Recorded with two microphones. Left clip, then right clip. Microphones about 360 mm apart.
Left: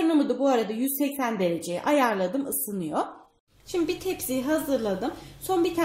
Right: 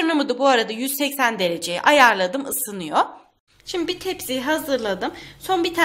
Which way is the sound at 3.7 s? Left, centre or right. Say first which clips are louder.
Right 3 dB; right.